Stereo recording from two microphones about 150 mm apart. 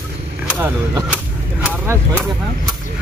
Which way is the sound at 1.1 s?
10° right (ahead or behind).